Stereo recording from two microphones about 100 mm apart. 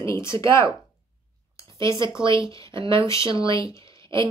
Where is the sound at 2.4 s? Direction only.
35° left (ahead or behind).